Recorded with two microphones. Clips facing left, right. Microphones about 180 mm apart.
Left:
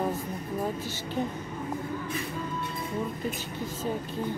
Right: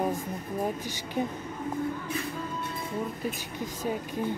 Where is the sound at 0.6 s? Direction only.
15° right (ahead or behind).